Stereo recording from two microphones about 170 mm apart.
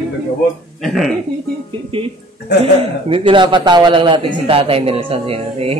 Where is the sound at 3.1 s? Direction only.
30° right (ahead or behind).